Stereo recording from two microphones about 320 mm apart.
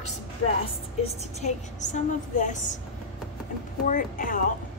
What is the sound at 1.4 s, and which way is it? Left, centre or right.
A woman's voice, left.